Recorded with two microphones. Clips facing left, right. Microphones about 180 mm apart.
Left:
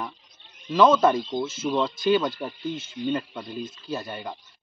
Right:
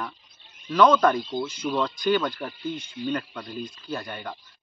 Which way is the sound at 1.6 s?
25° left (ahead or behind).